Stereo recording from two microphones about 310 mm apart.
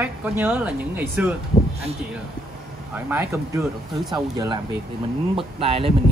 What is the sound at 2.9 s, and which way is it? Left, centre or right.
Speech, centre.